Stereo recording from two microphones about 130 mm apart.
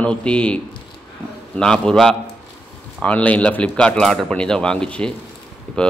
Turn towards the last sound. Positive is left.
turn(degrees=10)  # may be behind; listen again after turning